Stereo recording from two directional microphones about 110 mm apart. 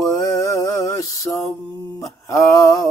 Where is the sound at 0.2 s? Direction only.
30° left (ahead or behind).